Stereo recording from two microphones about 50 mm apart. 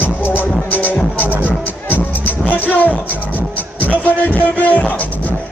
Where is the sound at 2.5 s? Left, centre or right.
Left.